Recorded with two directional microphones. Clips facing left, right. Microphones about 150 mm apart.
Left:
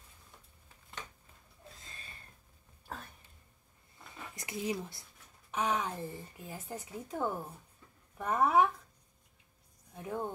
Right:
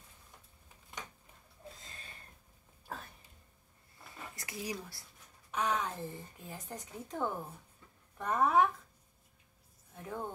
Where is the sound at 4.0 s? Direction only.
20° left (ahead or behind).